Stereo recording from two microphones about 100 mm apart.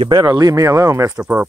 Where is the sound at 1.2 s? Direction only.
15° right (ahead or behind).